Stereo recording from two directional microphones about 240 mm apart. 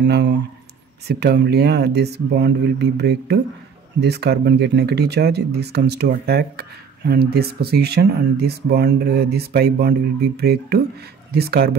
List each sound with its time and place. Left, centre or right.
0.0 s speech: right